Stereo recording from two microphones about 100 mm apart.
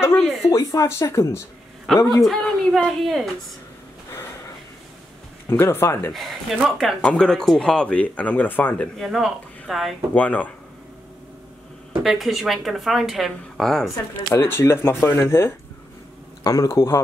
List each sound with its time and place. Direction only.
0.2 s a woman's voice: centre (ahead or behind)
0.5 s speech: 35° left (ahead or behind)
1.9 s a woman's voice: centre (ahead or behind)
5.5 s speech: 25° left (ahead or behind)
6.1 s a woman's voice: centre (ahead or behind); by 8.8 s 20° left (ahead or behind)
9.0 s a woman's voice: centre (ahead or behind)
10.1 s speech: 15° left (ahead or behind)
12.0 s a woman's voice: centre (ahead or behind)
14.3 s speech: 25° left (ahead or behind)